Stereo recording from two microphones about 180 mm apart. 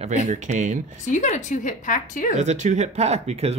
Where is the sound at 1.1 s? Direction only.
40° left (ahead or behind).